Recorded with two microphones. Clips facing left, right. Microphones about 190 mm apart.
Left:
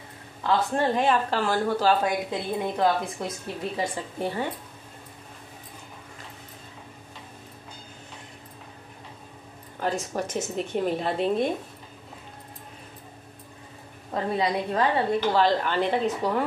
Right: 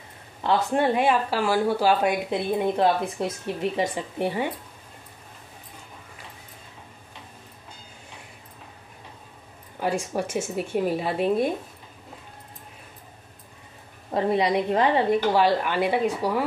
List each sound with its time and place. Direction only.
0.4 s a woman's voice: 15° right (ahead or behind)
9.8 s a woman's voice: 10° right (ahead or behind)
14.1 s a woman's voice: 20° right (ahead or behind)